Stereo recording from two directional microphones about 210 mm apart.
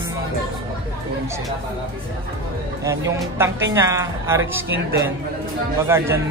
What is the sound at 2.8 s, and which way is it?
Speech, 15° right (ahead or behind).